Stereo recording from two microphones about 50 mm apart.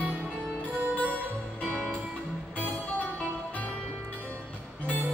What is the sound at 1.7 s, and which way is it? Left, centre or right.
Music, right.